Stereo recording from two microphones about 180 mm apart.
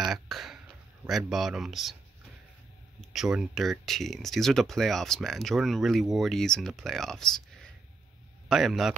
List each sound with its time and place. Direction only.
0.1 s throat clearing: centre (ahead or behind)
1.0 s speech: centre (ahead or behind)
3.1 s speech: 5° right (ahead or behind)
8.5 s speech: centre (ahead or behind)